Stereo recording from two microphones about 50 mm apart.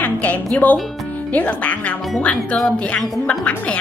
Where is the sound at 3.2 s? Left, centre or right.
Left.